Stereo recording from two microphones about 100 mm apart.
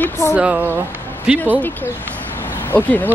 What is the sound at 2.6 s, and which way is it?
Speech, 15° left (ahead or behind).